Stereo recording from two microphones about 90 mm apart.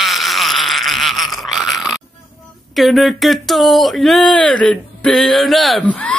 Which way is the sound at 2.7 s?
Centre (ahead or behind).